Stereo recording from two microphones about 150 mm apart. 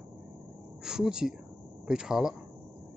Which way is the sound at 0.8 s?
5° right (ahead or behind).